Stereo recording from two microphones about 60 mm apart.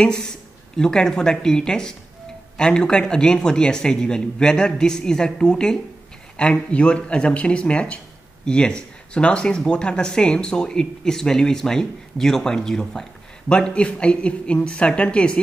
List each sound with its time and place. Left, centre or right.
0.0 s speech: centre